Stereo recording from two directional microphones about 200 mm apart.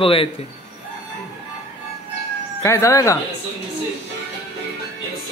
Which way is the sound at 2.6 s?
15° left (ahead or behind).